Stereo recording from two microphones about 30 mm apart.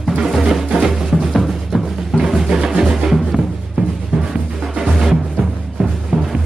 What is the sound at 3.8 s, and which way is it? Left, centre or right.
Music, right.